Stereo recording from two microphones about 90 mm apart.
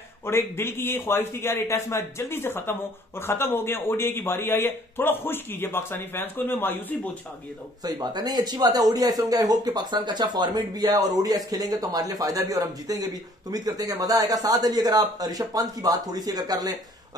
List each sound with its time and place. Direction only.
0.2 s a man's voice: 30° left (ahead or behind)
7.8 s speech: 50° right (ahead or behind)